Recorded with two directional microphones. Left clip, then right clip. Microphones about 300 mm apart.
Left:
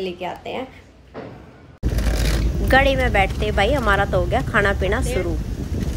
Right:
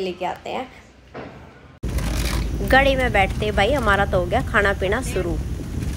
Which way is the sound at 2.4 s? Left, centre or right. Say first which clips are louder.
Even; centre.